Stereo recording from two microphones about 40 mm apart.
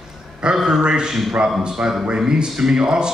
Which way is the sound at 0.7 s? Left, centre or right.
Right.